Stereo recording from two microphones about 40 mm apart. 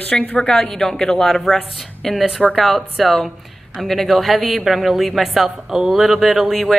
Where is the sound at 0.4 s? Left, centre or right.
Centre.